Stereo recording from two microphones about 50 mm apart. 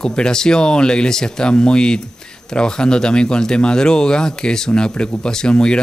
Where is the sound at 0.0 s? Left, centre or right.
Centre.